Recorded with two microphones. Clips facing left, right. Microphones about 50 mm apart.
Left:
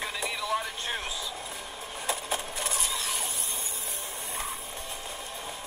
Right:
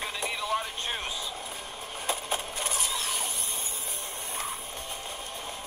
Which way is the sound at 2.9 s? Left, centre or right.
Right.